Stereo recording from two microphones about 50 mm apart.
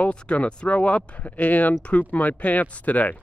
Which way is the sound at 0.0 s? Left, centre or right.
Left.